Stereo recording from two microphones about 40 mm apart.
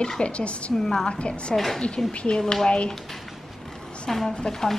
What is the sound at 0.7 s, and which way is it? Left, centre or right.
Speech, centre.